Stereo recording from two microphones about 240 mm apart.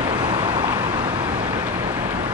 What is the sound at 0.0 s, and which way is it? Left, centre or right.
Vehicle, centre.